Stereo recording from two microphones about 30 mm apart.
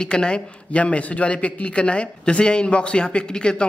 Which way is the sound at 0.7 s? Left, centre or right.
Left.